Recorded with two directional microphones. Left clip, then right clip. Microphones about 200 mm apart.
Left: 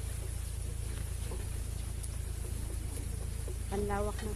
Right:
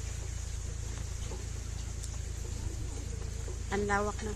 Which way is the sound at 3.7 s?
15° right (ahead or behind).